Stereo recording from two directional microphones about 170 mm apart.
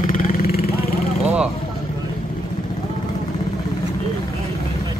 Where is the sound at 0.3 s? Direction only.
60° left (ahead or behind).